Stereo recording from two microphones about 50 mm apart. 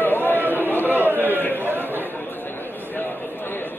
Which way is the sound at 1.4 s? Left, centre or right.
Left.